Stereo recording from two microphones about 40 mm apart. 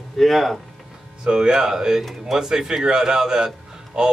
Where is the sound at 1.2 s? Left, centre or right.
Centre.